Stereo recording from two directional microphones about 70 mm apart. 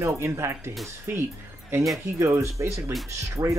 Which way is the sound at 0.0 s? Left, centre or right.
Right.